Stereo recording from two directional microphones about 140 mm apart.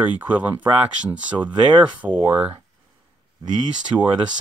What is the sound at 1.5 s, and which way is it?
Speech, 30° right (ahead or behind).